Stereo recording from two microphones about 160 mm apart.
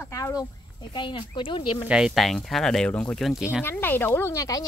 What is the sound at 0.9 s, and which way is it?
Speech, 30° left (ahead or behind).